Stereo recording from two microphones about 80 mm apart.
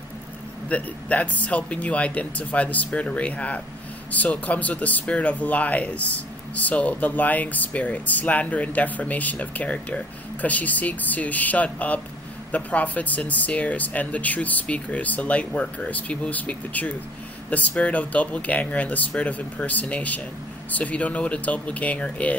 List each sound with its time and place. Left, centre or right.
0.7 s speech: centre